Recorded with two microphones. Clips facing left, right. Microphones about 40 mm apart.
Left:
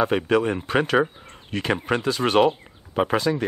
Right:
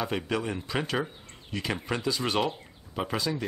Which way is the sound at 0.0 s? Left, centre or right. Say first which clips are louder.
Left 10 dB; left.